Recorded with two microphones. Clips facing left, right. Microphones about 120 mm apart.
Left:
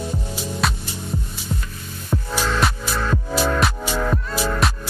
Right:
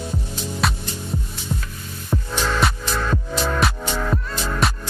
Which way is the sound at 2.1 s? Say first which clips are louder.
Even; centre (ahead or behind).